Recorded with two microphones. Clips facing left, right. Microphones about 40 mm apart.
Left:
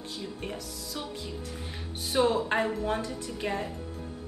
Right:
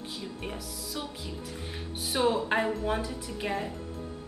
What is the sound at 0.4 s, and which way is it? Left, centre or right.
A woman's voice, centre.